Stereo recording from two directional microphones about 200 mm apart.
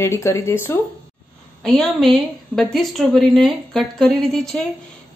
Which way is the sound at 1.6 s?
Centre (ahead or behind).